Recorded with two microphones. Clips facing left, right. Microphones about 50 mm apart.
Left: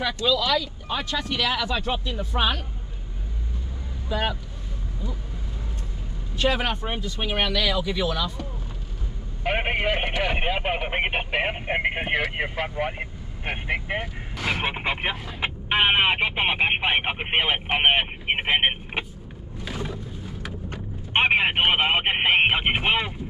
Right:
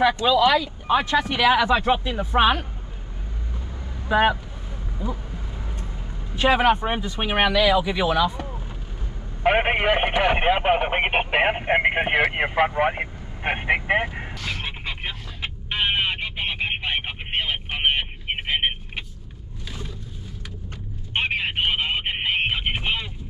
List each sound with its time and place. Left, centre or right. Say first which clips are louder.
0.1 s speech: right 5 dB; right
4.1 s speech: right 8 dB; right
6.3 s speech: right 6 dB; centre
14.3 s vehicle: left 5 dB; centre
21.1 s speech: left 5 dB; left